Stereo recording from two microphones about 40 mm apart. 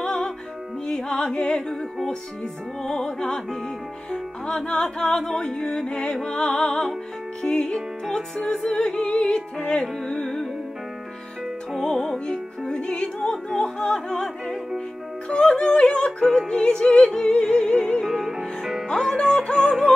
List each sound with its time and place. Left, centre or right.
0.0 s music: centre
2.8 s music: centre
5.0 s music: centre
10.2 s music: centre
11.7 s music: centre
15.2 s music: left
18.0 s music: centre
18.9 s music: centre